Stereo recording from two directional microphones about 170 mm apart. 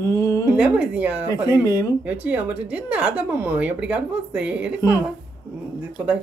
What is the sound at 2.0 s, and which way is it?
Speech, 10° right (ahead or behind).